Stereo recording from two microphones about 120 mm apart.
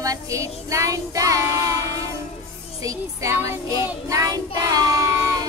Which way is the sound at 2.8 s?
25° right (ahead or behind).